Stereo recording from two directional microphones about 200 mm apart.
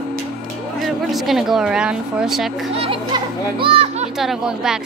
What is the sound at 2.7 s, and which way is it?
A child's voice, 25° right (ahead or behind).